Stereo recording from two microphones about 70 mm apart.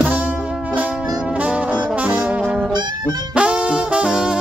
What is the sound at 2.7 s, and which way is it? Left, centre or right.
Brass instrument, right.